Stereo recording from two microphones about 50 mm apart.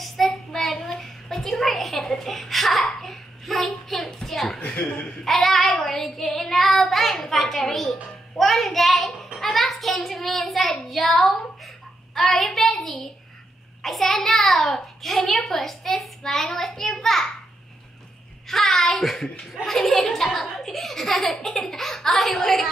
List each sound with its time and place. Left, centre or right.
0.2 s child singing: centre
0.7 s a sound: centre
4.6 s a woman's voice: left
5.2 s a child's voice: centre
18.5 s a child's voice: centre